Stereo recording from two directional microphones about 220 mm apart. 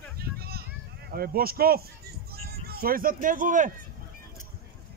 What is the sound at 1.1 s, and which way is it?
Speech, 45° right (ahead or behind).